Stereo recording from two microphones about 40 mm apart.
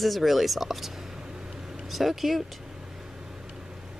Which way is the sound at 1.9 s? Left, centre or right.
Centre.